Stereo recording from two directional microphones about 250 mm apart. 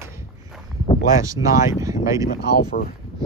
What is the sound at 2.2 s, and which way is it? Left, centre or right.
Speech, left.